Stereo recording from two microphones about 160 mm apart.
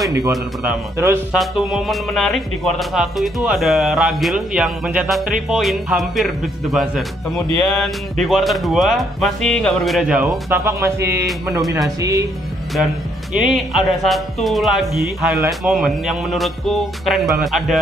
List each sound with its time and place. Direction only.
0.9 s speech: 20° right (ahead or behind)
1.3 s speech: centre (ahead or behind)
10.5 s speech: 15° right (ahead or behind)
13.3 s speech: 5° right (ahead or behind)